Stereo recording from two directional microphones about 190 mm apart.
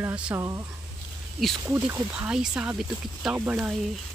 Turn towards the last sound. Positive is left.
turn(degrees=-5)  # may be behind; listen again after turning